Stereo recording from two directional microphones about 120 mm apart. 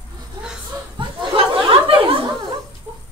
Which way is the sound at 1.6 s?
45° right (ahead or behind).